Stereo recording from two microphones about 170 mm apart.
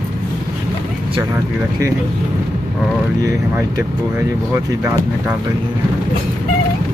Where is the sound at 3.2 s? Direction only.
20° right (ahead or behind).